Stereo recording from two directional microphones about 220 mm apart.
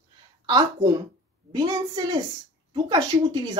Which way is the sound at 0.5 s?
20° right (ahead or behind).